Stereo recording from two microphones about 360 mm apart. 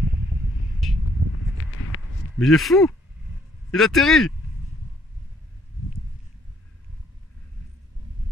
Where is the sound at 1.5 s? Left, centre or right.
Left.